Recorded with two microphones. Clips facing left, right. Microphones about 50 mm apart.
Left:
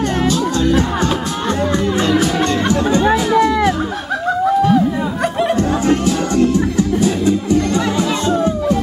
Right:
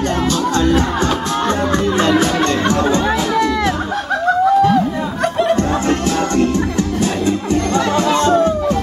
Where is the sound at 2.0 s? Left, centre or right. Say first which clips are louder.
Right 2 dB; right.